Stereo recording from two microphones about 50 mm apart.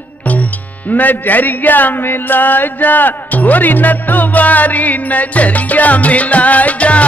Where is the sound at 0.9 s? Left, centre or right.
Left.